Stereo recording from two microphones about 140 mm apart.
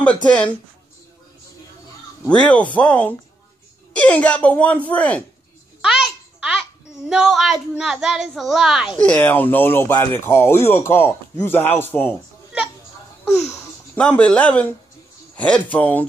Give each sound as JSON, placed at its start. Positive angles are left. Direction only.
{"t": 0.0, "sound": "a man's voice", "side_deg": 10}
{"t": 2.2, "sound": "a man's voice", "side_deg": 10}
{"t": 5.8, "sound": "a child's voice", "side_deg": -5}
{"t": 9.0, "sound": "a man's voice", "side_deg": 10}
{"t": 13.9, "sound": "a man's voice", "side_deg": 10}